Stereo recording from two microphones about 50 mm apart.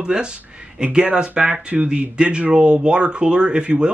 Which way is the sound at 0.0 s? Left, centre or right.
Centre.